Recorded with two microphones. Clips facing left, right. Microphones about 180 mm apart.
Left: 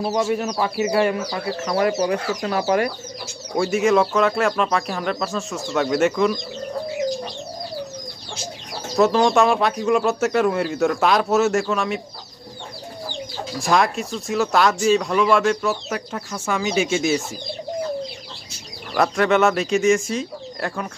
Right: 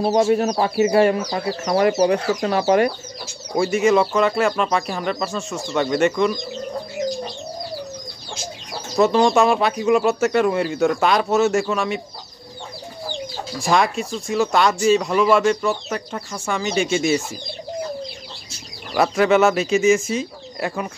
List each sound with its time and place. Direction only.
0.0 s speech: 30° right (ahead or behind)
3.5 s speech: centre (ahead or behind)
8.9 s speech: centre (ahead or behind)
13.6 s speech: centre (ahead or behind)
18.9 s speech: 5° right (ahead or behind)